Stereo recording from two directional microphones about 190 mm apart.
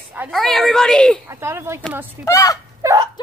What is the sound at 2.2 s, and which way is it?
Speech, 15° left (ahead or behind).